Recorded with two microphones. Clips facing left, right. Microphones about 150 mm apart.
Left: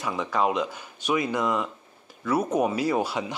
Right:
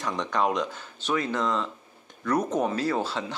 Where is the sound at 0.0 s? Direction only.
5° left (ahead or behind).